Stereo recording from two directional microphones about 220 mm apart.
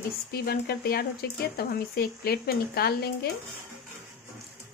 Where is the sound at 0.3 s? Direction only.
45° left (ahead or behind).